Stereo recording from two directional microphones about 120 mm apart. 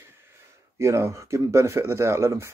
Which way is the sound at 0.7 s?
25° right (ahead or behind).